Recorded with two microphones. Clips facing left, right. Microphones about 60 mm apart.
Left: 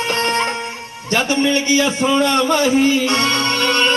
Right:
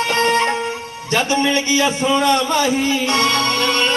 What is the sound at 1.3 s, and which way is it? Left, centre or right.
Speech, right.